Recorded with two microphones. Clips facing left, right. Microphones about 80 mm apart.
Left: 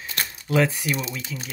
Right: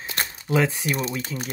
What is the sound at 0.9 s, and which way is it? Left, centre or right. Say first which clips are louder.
Speech: right 2 dB; right.